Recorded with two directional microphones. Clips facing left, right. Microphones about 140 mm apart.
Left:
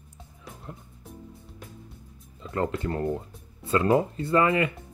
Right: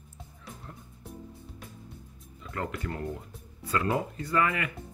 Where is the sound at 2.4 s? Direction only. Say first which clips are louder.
Left 7 dB; 30° left (ahead or behind).